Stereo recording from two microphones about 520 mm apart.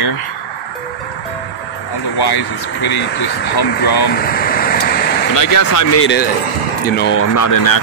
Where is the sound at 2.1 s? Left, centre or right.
Left.